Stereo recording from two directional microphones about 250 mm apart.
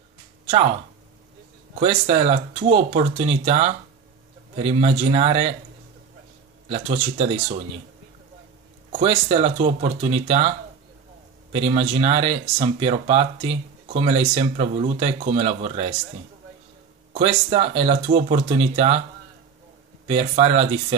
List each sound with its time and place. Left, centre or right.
1.8 s speech: right
6.7 s speech: right
8.9 s speech: right
11.5 s speech: right
17.1 s speech: right
20.1 s speech: right